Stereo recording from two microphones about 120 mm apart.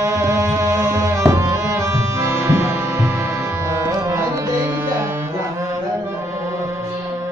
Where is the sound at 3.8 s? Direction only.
25° right (ahead or behind).